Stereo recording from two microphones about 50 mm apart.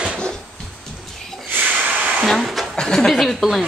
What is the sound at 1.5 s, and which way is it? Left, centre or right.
Snort, right.